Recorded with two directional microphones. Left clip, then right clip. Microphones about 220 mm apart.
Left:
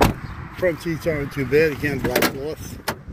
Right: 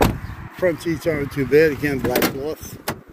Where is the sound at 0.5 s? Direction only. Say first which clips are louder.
Right 2 dB; 15° right (ahead or behind).